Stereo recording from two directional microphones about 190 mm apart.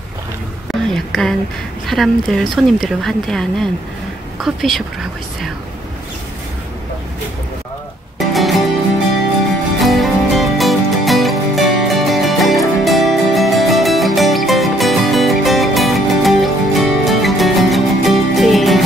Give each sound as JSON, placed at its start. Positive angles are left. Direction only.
{"t": 0.9, "sound": "speech", "side_deg": 0}
{"t": 8.2, "sound": "music", "side_deg": 0}
{"t": 9.8, "sound": "music", "side_deg": 0}